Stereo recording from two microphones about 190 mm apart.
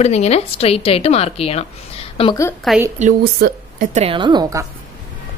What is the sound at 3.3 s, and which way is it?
Speech, 55° right (ahead or behind).